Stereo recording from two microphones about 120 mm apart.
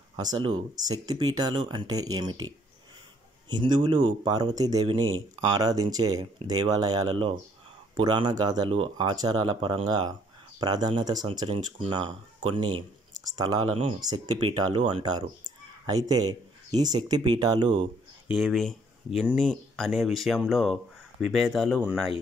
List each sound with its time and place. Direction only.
0.1 s speech: 35° right (ahead or behind)
18.3 s speech: centre (ahead or behind)